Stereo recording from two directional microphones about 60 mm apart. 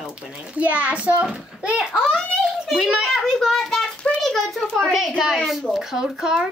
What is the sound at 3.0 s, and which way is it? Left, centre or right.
Speech, centre.